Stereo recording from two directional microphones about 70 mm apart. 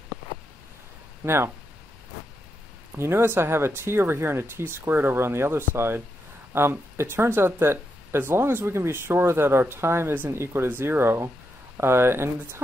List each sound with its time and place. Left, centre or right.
1.2 s speech: right
3.0 s speech: right
10.1 s speech: right